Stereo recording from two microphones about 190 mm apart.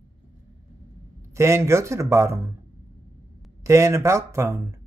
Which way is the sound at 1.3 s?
15° right (ahead or behind).